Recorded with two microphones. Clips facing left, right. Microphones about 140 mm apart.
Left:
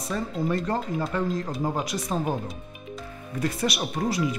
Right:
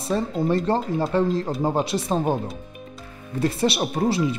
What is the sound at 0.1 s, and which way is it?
Speech, 30° right (ahead or behind).